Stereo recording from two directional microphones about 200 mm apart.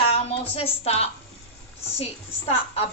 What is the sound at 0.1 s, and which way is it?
A woman's voice, 30° left (ahead or behind).